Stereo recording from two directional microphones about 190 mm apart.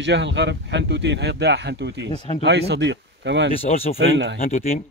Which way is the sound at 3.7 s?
40° left (ahead or behind).